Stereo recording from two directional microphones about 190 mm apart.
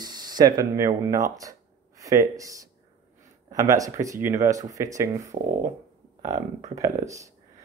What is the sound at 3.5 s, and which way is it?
Speech, 20° right (ahead or behind).